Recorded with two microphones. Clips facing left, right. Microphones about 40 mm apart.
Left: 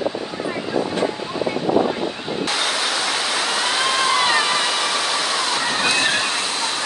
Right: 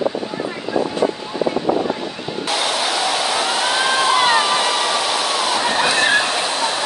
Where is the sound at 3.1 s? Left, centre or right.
Centre.